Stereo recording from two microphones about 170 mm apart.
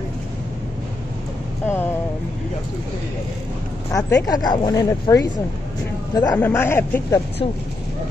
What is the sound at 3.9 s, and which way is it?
Speech, 20° left (ahead or behind).